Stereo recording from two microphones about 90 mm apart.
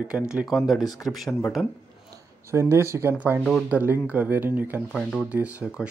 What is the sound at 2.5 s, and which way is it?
Speech, 30° right (ahead or behind).